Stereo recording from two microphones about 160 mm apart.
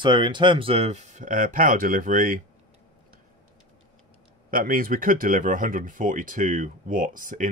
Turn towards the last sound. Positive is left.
turn(degrees=-55)  # may be behind; listen again after turning